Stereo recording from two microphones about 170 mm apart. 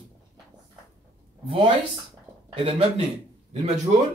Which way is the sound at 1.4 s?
30° right (ahead or behind).